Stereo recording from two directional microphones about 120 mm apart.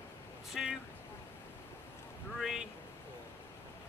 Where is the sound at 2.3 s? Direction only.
5° right (ahead or behind).